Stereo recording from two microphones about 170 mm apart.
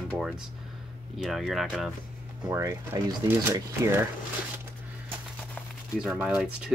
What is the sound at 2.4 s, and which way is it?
Speech, 15° right (ahead or behind).